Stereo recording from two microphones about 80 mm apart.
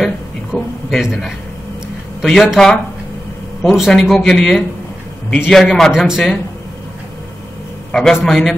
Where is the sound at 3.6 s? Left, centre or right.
Centre.